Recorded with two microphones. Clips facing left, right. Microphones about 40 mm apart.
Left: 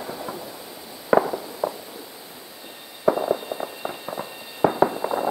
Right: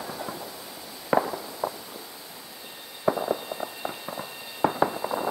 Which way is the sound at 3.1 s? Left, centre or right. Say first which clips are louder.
Left 4 dB; centre.